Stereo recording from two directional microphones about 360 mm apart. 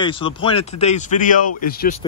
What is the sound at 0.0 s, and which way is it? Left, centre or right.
Speech, centre.